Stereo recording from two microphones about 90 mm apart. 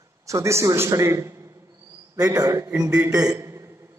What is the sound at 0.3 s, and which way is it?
A man's voice, 35° right (ahead or behind).